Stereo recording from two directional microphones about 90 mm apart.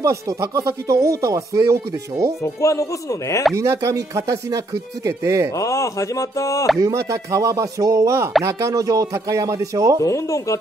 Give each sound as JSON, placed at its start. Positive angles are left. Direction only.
{"t": 0.3, "sound": "speech", "side_deg": -40}
{"t": 2.4, "sound": "speech", "side_deg": 35}
{"t": 3.5, "sound": "speech", "side_deg": -35}
{"t": 5.6, "sound": "speech", "side_deg": 35}
{"t": 6.8, "sound": "speech", "side_deg": -35}
{"t": 10.0, "sound": "speech", "side_deg": 35}